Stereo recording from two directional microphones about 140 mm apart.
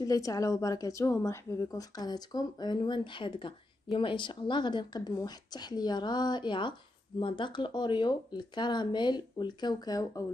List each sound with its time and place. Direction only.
0.0 s a woman's voice: 25° left (ahead or behind)